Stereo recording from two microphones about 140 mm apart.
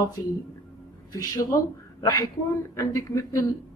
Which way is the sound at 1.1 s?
25° left (ahead or behind).